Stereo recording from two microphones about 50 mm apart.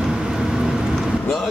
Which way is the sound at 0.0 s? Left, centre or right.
Centre.